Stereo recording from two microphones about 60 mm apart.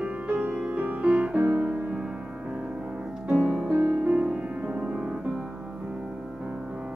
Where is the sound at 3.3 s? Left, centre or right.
Centre.